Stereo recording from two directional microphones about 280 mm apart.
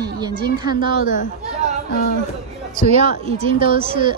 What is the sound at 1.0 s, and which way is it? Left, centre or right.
Speech, left.